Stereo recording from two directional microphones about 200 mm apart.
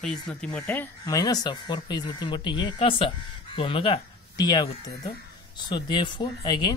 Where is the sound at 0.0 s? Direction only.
5° left (ahead or behind).